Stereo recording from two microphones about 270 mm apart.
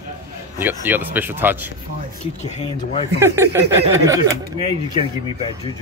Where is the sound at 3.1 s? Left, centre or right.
Centre.